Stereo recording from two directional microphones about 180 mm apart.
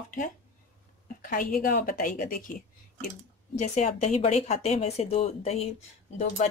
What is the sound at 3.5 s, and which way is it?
A woman's voice, 40° left (ahead or behind).